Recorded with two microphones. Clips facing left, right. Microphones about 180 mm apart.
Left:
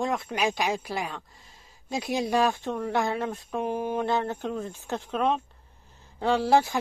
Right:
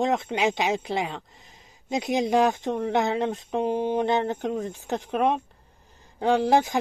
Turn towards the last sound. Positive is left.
turn(degrees=-15)  # may be behind; listen again after turning